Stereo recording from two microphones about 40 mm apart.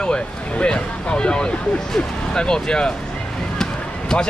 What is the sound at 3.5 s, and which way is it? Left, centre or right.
Basketball bounce, centre.